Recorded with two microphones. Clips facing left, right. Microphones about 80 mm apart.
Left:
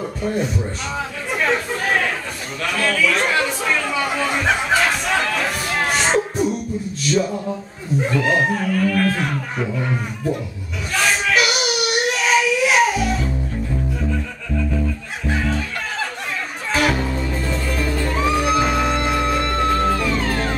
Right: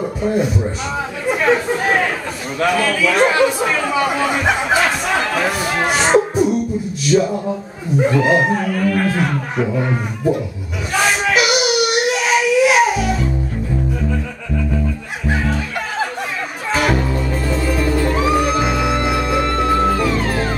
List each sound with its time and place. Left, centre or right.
0.2 s speech: centre
0.9 s chatter: centre
5.9 s music: centre
7.1 s speech: centre
9.7 s speech: right
10.9 s baby cry: centre
16.7 s music: centre